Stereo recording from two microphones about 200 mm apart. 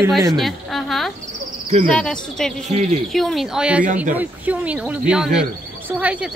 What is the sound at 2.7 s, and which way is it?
Speech, 35° right (ahead or behind).